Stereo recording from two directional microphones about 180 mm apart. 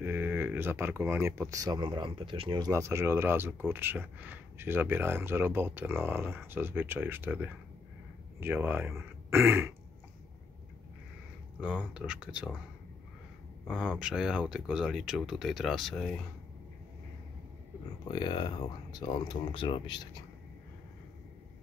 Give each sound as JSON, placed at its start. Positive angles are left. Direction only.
{"t": 0.0, "sound": "speech", "side_deg": -10}
{"t": 11.6, "sound": "speech", "side_deg": -5}
{"t": 13.7, "sound": "speech", "side_deg": -5}
{"t": 18.0, "sound": "speech", "side_deg": 25}